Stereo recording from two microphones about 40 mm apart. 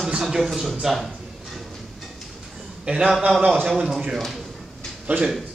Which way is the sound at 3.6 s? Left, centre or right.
Centre.